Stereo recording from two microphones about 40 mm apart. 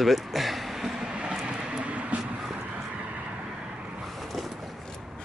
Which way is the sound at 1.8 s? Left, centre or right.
Right.